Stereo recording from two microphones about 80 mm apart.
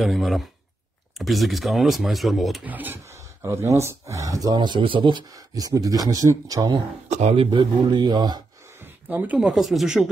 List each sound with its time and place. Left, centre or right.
0.0 s speech: centre
2.6 s speech: right
3.4 s speech: right
4.6 s speech: right
5.5 s speech: right
7.3 s speech: right
9.1 s speech: centre
9.5 s speech: centre